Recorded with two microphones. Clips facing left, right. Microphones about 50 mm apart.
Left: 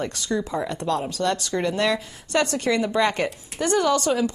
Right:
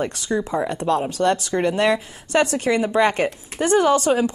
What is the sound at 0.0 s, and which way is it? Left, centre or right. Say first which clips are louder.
Speech: right 3 dB; right.